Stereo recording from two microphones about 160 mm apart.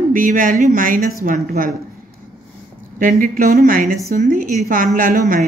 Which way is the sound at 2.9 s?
55° right (ahead or behind).